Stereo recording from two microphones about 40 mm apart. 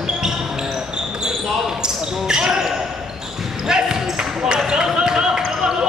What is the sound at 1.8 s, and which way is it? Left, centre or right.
Basketball bounce, centre.